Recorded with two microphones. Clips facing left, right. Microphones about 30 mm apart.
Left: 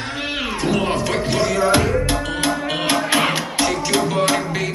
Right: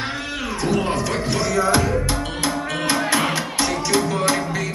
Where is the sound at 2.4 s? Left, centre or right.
Left.